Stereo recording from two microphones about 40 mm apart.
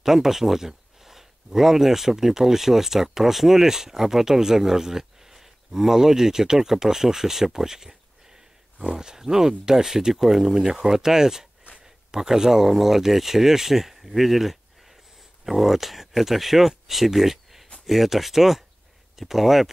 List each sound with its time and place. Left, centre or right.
0.0 s speech: centre